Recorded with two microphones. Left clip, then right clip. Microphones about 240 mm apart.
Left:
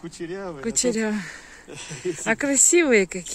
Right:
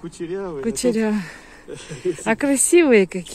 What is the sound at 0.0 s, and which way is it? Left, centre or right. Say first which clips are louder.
Speech: right 4 dB; left.